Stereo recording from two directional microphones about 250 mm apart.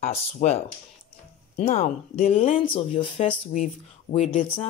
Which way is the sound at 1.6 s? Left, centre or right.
Left.